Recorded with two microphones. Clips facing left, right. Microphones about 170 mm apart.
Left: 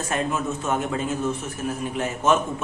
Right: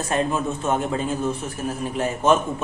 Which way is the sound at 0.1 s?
30° right (ahead or behind).